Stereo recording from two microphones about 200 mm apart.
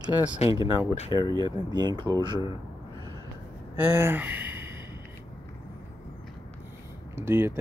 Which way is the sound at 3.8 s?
10° right (ahead or behind).